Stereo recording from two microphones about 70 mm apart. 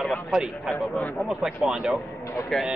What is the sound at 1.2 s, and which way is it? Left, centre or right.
Speech, centre.